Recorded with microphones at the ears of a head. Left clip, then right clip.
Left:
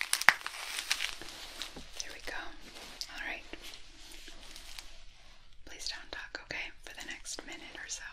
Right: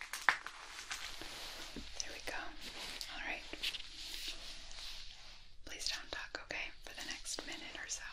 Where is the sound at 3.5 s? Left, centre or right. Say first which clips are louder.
Right 8 dB; right.